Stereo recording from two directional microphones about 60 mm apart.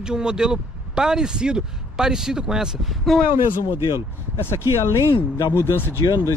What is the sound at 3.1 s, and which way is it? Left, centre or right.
Speech, centre.